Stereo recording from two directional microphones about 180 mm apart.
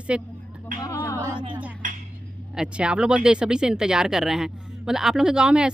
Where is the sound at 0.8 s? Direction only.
15° left (ahead or behind).